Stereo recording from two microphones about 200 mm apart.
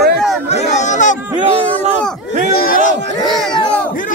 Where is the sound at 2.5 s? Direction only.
45° left (ahead or behind).